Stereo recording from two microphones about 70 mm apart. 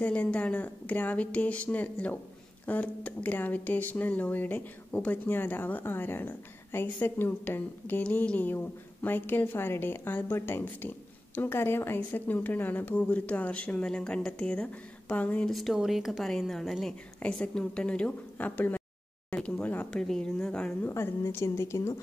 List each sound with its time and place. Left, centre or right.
0.0 s a woman's voice: left
15.5 s speech: centre
17.2 s a woman's voice: centre
20.8 s a woman's voice: left